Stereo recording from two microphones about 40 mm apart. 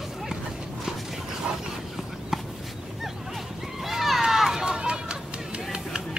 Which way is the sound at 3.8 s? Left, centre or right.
Centre.